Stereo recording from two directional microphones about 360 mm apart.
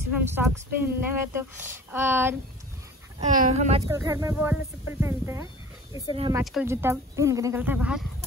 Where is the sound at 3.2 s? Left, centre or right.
Centre.